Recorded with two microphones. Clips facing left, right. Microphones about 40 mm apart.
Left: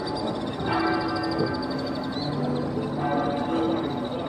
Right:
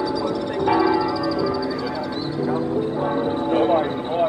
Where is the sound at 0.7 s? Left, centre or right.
Centre.